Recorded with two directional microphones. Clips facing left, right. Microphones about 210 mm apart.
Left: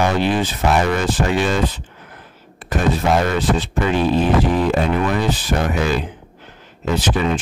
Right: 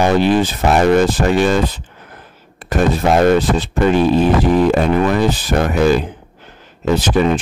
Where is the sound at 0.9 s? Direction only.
40° right (ahead or behind).